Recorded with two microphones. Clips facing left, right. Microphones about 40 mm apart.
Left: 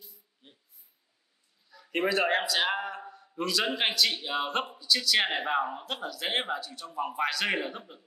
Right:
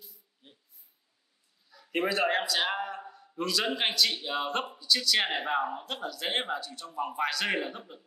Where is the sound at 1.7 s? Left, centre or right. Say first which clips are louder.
Left 1 dB; centre.